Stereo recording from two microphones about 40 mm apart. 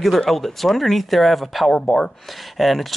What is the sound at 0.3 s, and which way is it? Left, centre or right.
Speech, centre.